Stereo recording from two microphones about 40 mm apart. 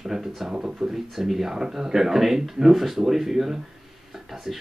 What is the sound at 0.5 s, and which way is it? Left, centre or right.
Speech, right.